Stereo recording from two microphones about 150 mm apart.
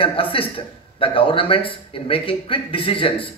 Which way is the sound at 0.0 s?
35° left (ahead or behind).